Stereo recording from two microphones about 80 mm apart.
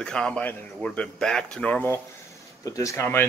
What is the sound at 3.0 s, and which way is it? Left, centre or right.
Speech, left.